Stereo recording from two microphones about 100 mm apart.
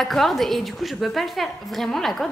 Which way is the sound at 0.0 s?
5° left (ahead or behind).